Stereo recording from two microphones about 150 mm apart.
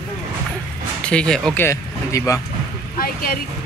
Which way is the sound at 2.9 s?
75° left (ahead or behind).